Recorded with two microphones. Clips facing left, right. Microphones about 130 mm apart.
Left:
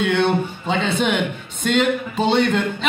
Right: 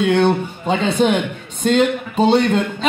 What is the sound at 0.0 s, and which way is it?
Speech, 35° right (ahead or behind).